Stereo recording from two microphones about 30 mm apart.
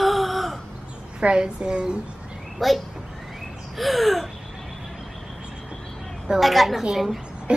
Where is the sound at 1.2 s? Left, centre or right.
Right.